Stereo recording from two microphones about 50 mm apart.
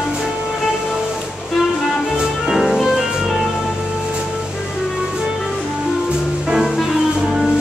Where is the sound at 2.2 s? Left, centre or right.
Centre.